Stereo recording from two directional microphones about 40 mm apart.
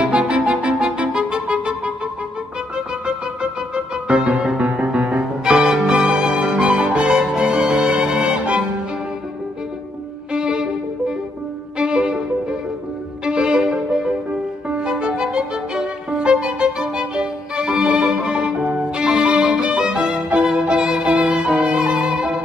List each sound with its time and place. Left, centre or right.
0.1 s music: right
3.7 s music: right
10.3 s music: centre
11.8 s violin: centre
13.7 s music: centre
14.8 s music: right
16.2 s violin: right
17.9 s music: centre
18.6 s violin: right